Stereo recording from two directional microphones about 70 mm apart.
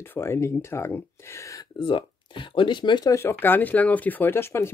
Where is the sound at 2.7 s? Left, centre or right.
Left.